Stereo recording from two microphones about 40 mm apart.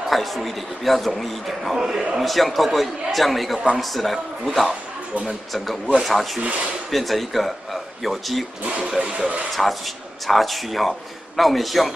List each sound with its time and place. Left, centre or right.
0.1 s a man's voice: centre
1.8 s a man's voice: centre
2.1 s a man's voice: centre
9.0 s speech: right
9.5 s a man's voice: centre